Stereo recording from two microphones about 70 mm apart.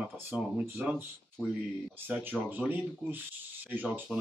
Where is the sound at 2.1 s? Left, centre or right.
Right.